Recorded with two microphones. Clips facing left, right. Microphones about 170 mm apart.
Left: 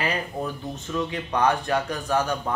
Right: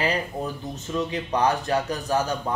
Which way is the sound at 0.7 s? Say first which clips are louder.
Right 2 dB; 35° right (ahead or behind).